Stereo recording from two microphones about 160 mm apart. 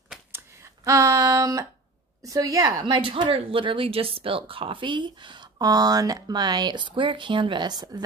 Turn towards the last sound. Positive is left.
turn(degrees=-25)  # may be behind; listen again after turning